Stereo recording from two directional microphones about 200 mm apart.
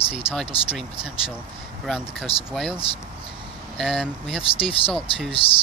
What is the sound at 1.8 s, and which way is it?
Speech, centre (ahead or behind).